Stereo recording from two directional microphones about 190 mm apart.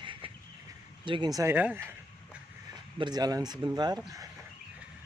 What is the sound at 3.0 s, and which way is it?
Speech, 20° right (ahead or behind).